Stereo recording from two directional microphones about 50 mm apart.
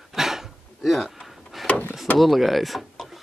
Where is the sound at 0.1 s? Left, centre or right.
Centre.